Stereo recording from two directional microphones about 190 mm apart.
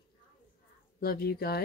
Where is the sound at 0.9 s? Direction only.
55° left (ahead or behind).